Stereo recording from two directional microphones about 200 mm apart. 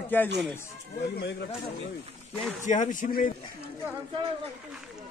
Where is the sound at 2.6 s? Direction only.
40° left (ahead or behind).